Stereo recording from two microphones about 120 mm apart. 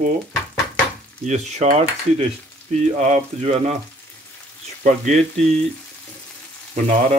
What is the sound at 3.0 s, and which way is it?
Speech, 75° right (ahead or behind).